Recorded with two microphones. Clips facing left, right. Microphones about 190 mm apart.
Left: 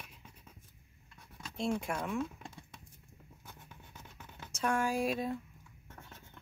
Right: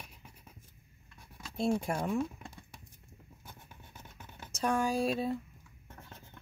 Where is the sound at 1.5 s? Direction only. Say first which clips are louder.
Right 4 dB; 35° right (ahead or behind).